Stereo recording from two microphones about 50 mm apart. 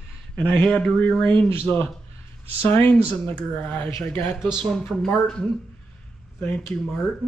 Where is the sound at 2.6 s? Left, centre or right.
Left.